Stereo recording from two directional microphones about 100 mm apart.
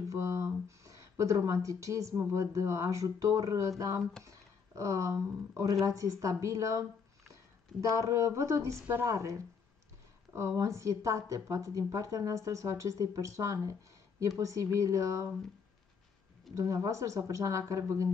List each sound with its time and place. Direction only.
0.1 s speech: 30° right (ahead or behind)
7.9 s speech: 30° right (ahead or behind)
16.5 s speech: 35° right (ahead or behind)